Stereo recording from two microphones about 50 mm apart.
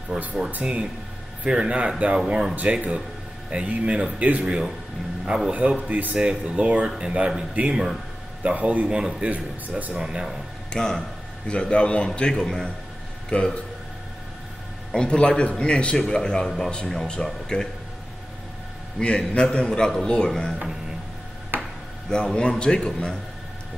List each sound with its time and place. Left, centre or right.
0.1 s speech: centre
1.5 s speech: centre
2.1 s speech: centre
2.5 s speech: right
5.2 s a man's voice: centre
5.9 s speech: right
10.0 s speech: centre
10.7 s a man's voice: centre
13.3 s a man's voice: left
14.9 s a man's voice: centre
18.9 s speech: left
21.5 s a sound: right
22.1 s speech: centre